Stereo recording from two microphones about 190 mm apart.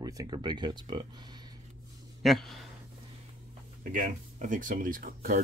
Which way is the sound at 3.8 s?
45° right (ahead or behind).